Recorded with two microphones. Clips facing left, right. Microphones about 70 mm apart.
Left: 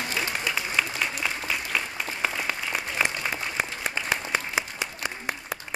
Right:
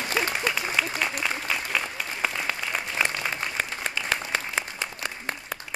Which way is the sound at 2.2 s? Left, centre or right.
Centre.